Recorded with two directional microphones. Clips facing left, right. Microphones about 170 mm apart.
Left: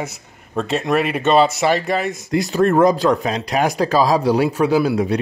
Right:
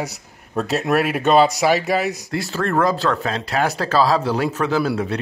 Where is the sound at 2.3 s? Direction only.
20° left (ahead or behind).